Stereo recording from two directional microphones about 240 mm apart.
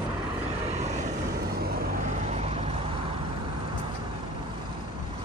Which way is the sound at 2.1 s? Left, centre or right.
Right.